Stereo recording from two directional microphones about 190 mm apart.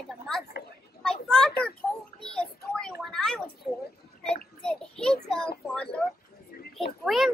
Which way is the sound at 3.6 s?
40° left (ahead or behind).